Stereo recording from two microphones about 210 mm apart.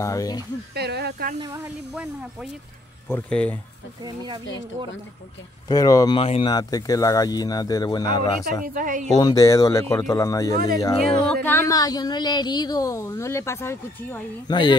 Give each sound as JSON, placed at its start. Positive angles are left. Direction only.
{"t": 0.0, "sound": "a woman's voice", "side_deg": 15}
{"t": 0.7, "sound": "snake", "side_deg": -50}
{"t": 1.4, "sound": "speech", "side_deg": -15}
{"t": 3.1, "sound": "a woman's voice", "side_deg": 5}
{"t": 4.0, "sound": "speech", "side_deg": -20}
{"t": 5.7, "sound": "a woman's voice", "side_deg": 15}
{"t": 8.7, "sound": "a woman's voice", "side_deg": -40}
{"t": 9.1, "sound": "a woman's voice", "side_deg": 15}